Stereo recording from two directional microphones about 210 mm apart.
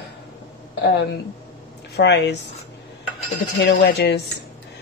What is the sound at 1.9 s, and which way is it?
Speech, 55° left (ahead or behind).